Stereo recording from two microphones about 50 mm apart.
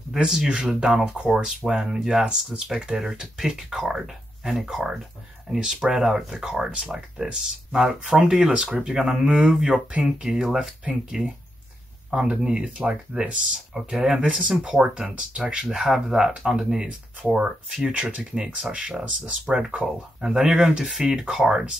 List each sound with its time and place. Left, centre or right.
0.1 s speech: centre